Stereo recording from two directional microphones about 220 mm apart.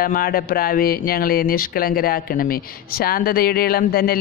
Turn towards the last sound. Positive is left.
turn(degrees=45)  # may be behind; listen again after turning